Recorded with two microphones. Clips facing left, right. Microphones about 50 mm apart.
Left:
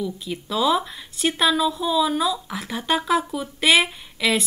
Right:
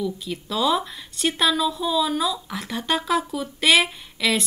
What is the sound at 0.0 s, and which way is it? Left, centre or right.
A woman's voice, centre.